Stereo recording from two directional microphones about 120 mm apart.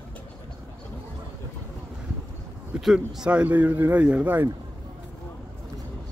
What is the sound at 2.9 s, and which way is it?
Speech, 5° right (ahead or behind).